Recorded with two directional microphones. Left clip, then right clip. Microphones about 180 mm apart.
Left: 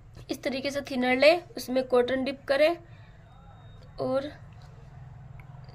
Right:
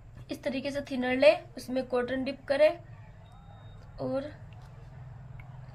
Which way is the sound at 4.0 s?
65° left (ahead or behind).